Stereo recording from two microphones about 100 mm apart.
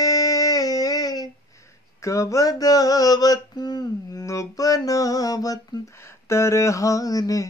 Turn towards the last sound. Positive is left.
turn(degrees=35)  # may be behind; listen again after turning